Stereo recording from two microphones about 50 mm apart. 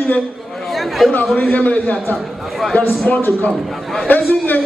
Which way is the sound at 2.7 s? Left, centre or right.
Left.